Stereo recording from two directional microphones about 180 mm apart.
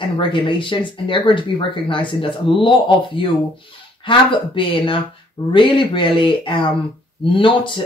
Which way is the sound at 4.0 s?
30° left (ahead or behind).